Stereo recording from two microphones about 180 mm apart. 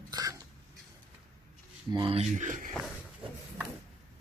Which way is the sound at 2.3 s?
45° right (ahead or behind).